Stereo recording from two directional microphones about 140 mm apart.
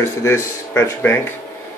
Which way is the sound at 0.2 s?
20° left (ahead or behind).